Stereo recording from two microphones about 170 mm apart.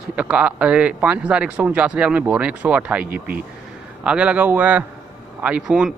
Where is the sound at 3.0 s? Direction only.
60° right (ahead or behind).